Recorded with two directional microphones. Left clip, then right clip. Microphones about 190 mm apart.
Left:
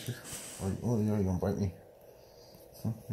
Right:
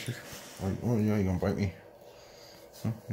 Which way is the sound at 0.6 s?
35° right (ahead or behind).